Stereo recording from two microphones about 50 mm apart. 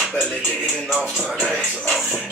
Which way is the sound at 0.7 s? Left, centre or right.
Centre.